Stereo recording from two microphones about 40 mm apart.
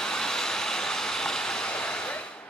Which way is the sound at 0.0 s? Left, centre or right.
Centre.